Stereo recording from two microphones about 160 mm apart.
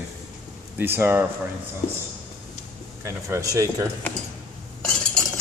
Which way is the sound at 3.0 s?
20° right (ahead or behind).